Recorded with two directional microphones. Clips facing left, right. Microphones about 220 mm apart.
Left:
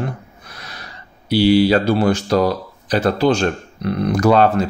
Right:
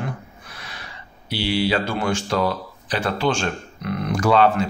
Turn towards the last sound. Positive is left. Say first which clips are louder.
# left 4 dB
turn(degrees=40)  # may be behind; listen again after turning